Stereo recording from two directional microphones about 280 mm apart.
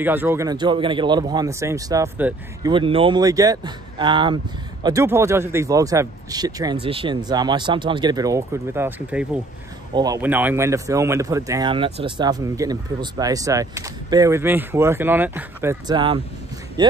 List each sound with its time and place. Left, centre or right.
0.0 s speech: centre